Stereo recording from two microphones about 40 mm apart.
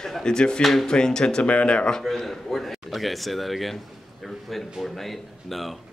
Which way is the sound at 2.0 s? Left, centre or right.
Centre.